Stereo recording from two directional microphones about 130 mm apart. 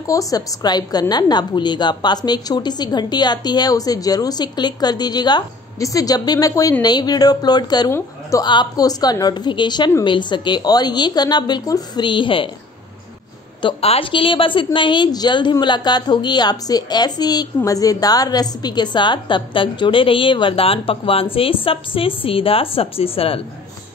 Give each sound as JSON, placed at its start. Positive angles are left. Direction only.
{"t": 0.0, "sound": "a woman's voice", "side_deg": 25}
{"t": 8.5, "sound": "a woman's voice", "side_deg": 35}
{"t": 13.6, "sound": "a woman's voice", "side_deg": 45}